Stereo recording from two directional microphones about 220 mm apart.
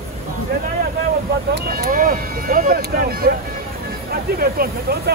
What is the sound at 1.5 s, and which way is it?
Speech, 45° right (ahead or behind).